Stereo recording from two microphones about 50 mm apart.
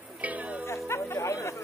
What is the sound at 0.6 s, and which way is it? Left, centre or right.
Chatter, left.